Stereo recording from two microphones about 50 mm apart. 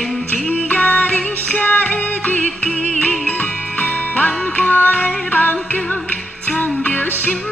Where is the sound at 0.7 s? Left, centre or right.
Left.